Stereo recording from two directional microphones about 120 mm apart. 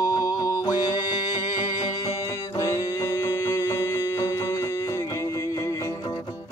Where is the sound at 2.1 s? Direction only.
25° left (ahead or behind).